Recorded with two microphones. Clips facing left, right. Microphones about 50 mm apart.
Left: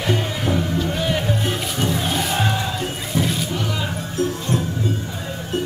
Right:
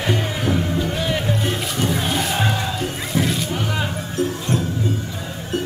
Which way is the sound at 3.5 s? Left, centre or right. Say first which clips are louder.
Right 1 dB; right.